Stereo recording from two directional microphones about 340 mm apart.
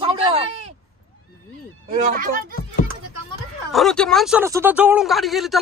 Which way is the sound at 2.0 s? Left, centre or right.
Right.